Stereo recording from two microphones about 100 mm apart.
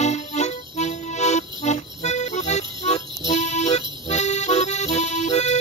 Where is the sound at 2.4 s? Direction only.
90° left.